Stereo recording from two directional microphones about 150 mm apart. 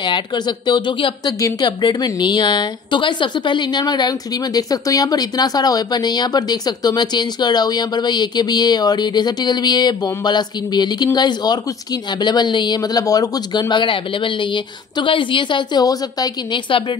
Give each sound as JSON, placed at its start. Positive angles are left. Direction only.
{"t": 0.0, "sound": "speech", "side_deg": 30}